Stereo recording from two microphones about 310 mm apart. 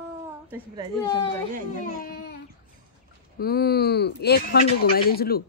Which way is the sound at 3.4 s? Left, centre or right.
Left.